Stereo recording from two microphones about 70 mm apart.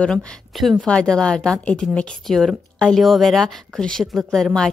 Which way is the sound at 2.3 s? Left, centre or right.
Centre.